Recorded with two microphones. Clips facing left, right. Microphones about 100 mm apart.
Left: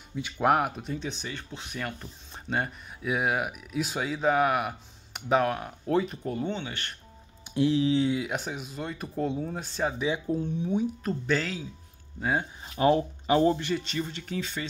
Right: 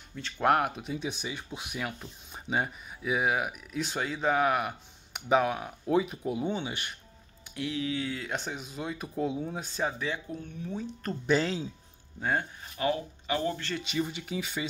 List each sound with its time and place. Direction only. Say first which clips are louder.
0.1 s speech: left 1 dB; 5° left (ahead or behind); by 7.0 s 15° right (ahead or behind)
7.4 s mantra: left 9 dB; 25° left (ahead or behind)
8.2 s speech: left 3 dB; 5° left (ahead or behind)
9.9 s speech: left 5 dB; 15° left (ahead or behind)
10.2 s speech: left 10 dB; 30° left (ahead or behind)
10.6 s mantra: left 6 dB; 20° left (ahead or behind)
10.9 s speech: left 4 dB; 5° left (ahead or behind)
11.2 s speech: right 3 dB; 20° right (ahead or behind)
12.2 s speech: left 2 dB; 5° left (ahead or behind)
12.6 s speech: left 11 dB; 30° left (ahead or behind)
13.7 s speech: right 1 dB; 5° right (ahead or behind)